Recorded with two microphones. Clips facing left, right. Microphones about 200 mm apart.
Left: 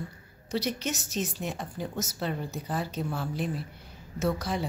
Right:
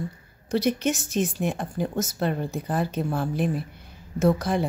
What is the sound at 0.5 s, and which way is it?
A woman's voice, 55° right (ahead or behind).